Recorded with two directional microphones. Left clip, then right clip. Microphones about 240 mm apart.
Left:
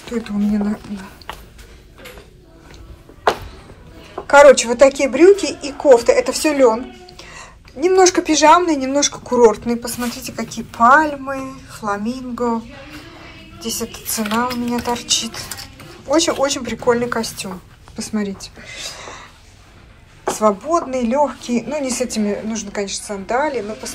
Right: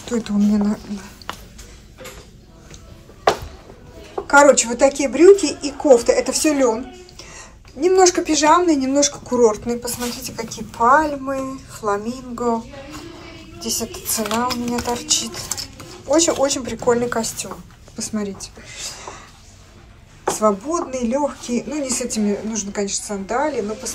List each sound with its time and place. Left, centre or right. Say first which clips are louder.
0.2 s speech: left 1 dB; centre
4.3 s speech: left 4 dB; centre
13.6 s speech: even; centre
20.2 s a woman's voice: left 2 dB; centre